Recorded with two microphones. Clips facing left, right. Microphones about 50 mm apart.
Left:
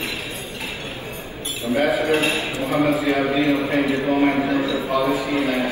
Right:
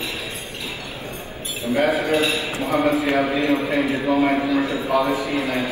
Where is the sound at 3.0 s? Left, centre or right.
Right.